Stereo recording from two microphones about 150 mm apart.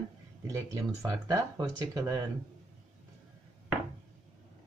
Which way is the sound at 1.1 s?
25° right (ahead or behind).